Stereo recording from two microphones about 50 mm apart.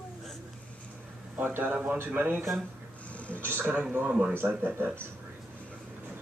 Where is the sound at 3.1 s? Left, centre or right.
Left.